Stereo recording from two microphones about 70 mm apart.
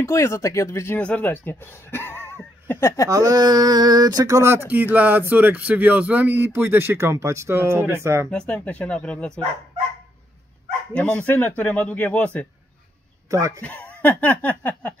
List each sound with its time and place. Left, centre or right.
0.0 s speech: left
0.9 s speech: centre
3.1 s speech: right
4.4 s speech: right
4.6 s speech: right
8.3 s speech: centre
11.1 s speech: left
13.3 s speech: right
13.6 s speech: left